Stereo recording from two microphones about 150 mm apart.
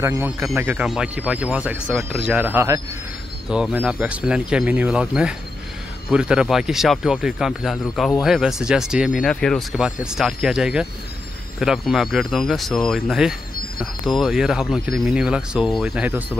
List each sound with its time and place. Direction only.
0.0 s speech: 20° right (ahead or behind)
3.4 s speech: 5° right (ahead or behind)